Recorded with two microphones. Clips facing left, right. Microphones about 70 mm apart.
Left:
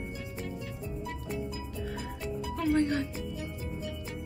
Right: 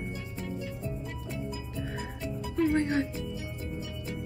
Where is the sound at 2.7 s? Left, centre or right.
Right.